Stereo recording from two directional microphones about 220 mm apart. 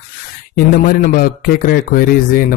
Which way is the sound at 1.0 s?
40° left (ahead or behind).